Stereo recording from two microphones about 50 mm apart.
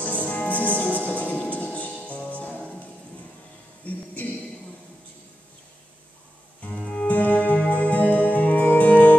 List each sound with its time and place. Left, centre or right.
0.0 s music: left
6.8 s music: centre
7.1 s music: left